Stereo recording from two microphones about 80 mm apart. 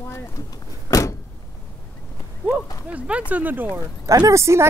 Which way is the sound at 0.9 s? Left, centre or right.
Left.